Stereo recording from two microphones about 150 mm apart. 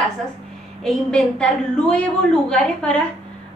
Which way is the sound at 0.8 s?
5° left (ahead or behind).